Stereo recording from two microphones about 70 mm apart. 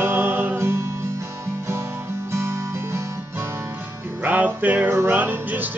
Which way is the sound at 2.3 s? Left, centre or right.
Right.